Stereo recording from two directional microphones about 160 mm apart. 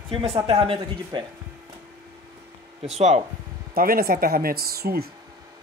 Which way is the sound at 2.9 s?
45° right (ahead or behind).